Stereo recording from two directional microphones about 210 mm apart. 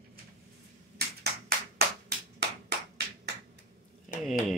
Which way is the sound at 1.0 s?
50° right (ahead or behind).